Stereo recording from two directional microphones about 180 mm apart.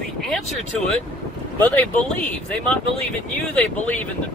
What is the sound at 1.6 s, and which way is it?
Speech, 10° left (ahead or behind).